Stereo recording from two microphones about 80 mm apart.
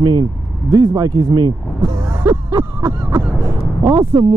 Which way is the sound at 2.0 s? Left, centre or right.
Right.